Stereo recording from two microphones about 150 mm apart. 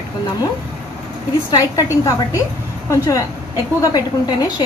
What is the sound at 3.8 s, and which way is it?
Speech, 25° left (ahead or behind).